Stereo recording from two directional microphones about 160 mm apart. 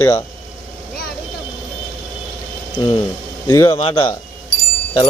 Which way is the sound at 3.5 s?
20° left (ahead or behind).